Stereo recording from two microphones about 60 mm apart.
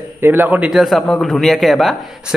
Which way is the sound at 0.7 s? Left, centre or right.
Centre.